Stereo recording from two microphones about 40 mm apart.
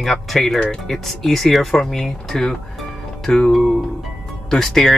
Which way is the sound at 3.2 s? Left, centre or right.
Centre.